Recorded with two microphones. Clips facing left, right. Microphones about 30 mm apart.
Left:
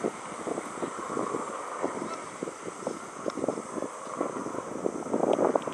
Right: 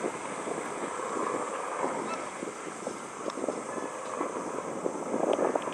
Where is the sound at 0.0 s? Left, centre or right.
Centre.